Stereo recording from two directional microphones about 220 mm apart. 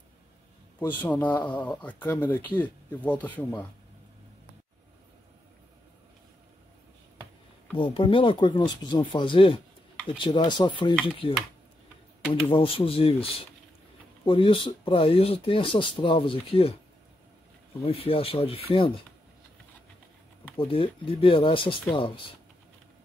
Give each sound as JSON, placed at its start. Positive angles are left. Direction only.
{"t": 1.0, "sound": "speech", "side_deg": 5}
{"t": 7.7, "sound": "speech", "side_deg": 20}
{"t": 12.4, "sound": "speech", "side_deg": 25}
{"t": 17.8, "sound": "speech", "side_deg": 25}
{"t": 20.5, "sound": "speech", "side_deg": 25}